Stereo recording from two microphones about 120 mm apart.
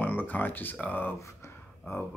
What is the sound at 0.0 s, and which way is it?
Speech, 15° left (ahead or behind).